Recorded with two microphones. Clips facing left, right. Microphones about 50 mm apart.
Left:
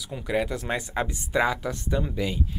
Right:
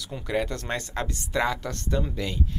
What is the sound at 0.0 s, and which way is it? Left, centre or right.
Speech, centre.